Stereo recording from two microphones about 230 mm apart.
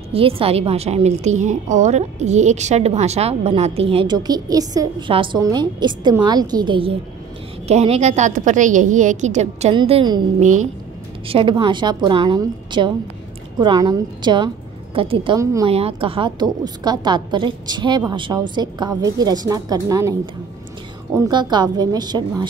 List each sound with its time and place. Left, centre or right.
0.1 s a woman's voice: right
11.2 s a woman's voice: right